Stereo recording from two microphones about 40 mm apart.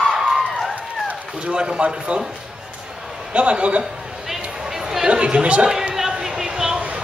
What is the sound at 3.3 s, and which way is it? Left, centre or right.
Speech, right.